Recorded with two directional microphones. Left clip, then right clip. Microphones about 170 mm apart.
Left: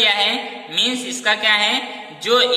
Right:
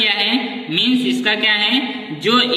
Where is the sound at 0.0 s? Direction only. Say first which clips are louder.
Even; 35° left (ahead or behind).